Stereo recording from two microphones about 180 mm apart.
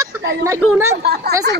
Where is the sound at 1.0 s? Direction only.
60° right (ahead or behind).